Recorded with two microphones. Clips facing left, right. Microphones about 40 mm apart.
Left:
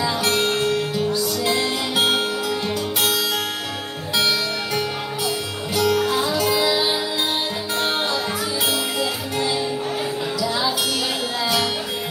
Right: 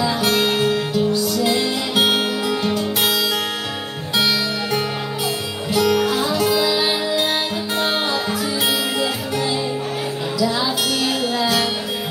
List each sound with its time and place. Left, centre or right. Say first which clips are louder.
0.4 s music: right 2 dB; right
2.0 s guitar: right 3 dB; right
5.8 s music: right 2 dB; right
6.5 s music: right 1 dB; centre